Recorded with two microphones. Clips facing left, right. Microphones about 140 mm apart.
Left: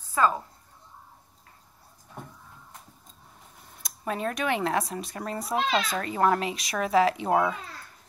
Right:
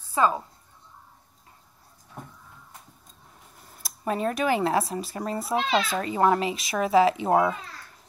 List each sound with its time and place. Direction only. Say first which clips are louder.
0.2 s a woman's voice: right 1 dB; 20° right (ahead or behind)
3.5 s speech: right 2 dB; centre (ahead or behind)